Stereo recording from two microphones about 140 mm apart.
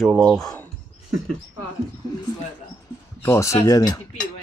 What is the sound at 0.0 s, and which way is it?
Speech, centre (ahead or behind).